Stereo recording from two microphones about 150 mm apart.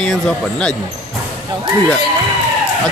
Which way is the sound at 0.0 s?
5° left (ahead or behind).